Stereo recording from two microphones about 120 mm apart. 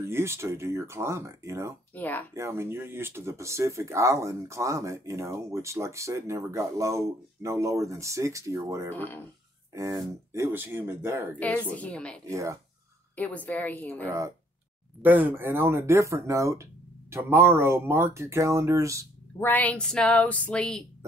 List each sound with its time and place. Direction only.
0.0 s speech: 20° right (ahead or behind)
2.0 s speech: 15° left (ahead or behind)
2.3 s speech: 25° right (ahead or behind)
8.9 s speech: 15° left (ahead or behind)
9.8 s speech: 25° right (ahead or behind)
11.3 s speech: 10° left (ahead or behind)
12.3 s speech: 25° right (ahead or behind)
13.1 s speech: 15° left (ahead or behind)
14.0 s speech: 25° right (ahead or behind)
15.0 s speech: 15° right (ahead or behind)
19.4 s speech: 15° left (ahead or behind)